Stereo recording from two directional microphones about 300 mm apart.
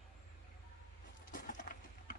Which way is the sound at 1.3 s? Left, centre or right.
Left.